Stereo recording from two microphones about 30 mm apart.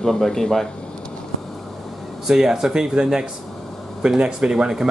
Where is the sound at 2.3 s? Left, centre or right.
Centre.